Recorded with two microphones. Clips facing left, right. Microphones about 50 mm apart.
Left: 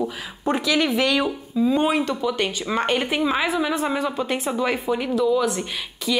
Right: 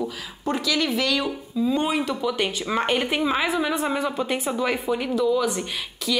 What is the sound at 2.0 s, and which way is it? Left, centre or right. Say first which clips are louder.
A woman's voice: left 1 dB; centre.